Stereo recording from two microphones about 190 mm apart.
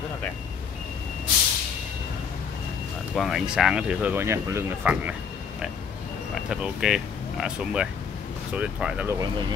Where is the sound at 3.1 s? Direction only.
Centre (ahead or behind).